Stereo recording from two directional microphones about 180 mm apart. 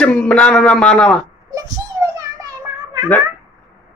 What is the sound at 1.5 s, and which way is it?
Child singing, 20° right (ahead or behind).